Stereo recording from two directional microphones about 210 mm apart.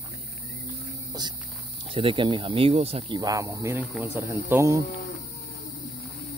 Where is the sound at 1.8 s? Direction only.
25° right (ahead or behind).